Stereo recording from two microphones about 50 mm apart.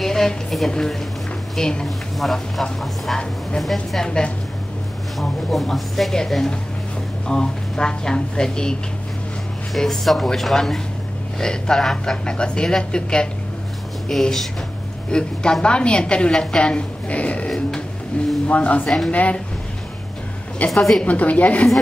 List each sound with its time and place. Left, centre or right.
0.0 s a sound: centre
1.6 s a woman's voice: centre
2.1 s a woman's voice: centre
5.5 s a woman's voice: centre
9.8 s a woman's voice: centre
14.0 s a woman's voice: centre
15.0 s a woman's voice: centre
17.5 s a sound: centre
18.2 s a sound: left
18.5 s a woman's voice: left
20.5 s a woman's voice: left